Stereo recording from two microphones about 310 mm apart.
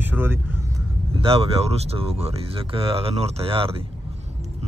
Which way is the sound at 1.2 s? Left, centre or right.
Centre.